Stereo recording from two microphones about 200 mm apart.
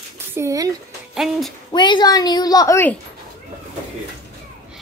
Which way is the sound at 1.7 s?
20° left (ahead or behind).